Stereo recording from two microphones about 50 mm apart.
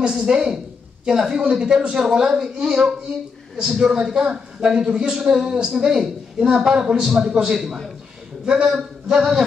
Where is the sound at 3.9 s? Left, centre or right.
Centre.